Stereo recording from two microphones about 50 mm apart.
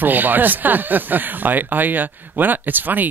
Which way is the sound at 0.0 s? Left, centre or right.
Right.